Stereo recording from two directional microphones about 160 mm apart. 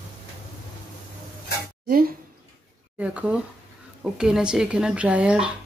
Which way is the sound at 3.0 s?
10° right (ahead or behind).